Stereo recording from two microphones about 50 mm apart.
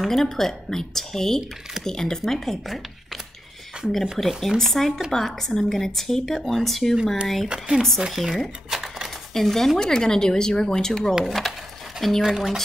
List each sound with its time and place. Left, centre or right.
0.0 s speech: centre
3.8 s speech: centre
4.2 s speech: centre
7.4 s speech: centre
8.1 s speech: centre
8.6 s a sound: centre
9.3 s speech: centre